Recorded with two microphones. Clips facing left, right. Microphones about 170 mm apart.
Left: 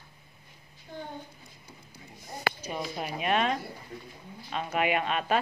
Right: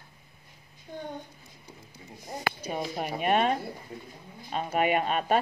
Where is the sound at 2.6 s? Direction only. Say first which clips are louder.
Right 2 dB; 45° right (ahead or behind).